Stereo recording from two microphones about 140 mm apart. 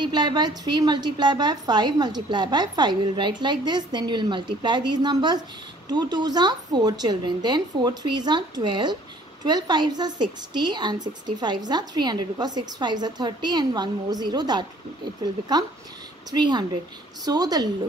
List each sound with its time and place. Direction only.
0.0 s a woman's voice: 30° right (ahead or behind)